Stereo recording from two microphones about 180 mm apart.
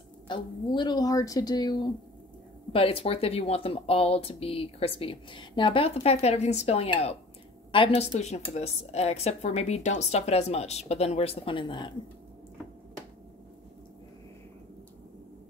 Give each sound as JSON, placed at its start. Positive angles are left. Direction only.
{"t": 0.3, "sound": "speech", "side_deg": 25}